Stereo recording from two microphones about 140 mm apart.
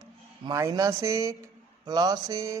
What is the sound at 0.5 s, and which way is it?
A woman's voice, 25° right (ahead or behind).